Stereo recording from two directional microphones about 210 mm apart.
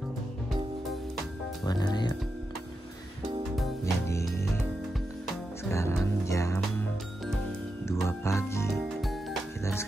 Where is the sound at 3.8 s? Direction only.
15° left (ahead or behind).